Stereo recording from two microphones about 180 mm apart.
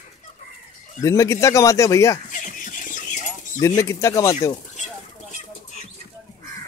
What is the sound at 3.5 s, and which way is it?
Speech, 15° left (ahead or behind).